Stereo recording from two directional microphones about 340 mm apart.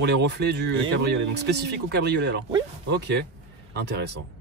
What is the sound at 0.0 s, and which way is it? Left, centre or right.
Speech, right.